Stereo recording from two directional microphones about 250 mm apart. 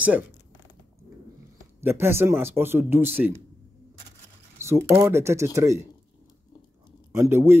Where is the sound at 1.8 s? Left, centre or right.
Centre.